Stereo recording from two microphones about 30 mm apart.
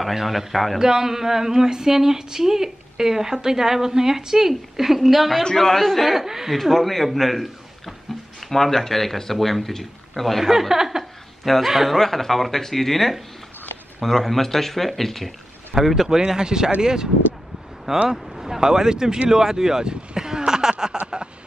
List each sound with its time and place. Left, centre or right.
0.1 s speech: centre
0.7 s speech: centre
5.4 s speech: centre
6.0 s speech: centre
6.5 s a man's voice: centre
10.4 s speech: centre
11.0 s a sound: centre
11.7 s speech: centre
12.0 s speech: centre
15.7 s speech: centre
18.1 s speech: centre
18.6 s speech: right
19.9 s a sound: right